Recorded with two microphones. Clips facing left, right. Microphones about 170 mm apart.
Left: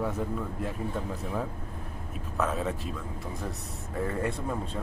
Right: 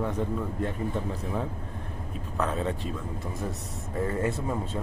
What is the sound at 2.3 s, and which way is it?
Speech, centre (ahead or behind).